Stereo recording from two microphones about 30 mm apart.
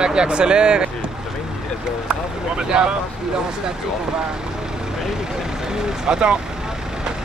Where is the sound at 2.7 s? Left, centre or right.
Right.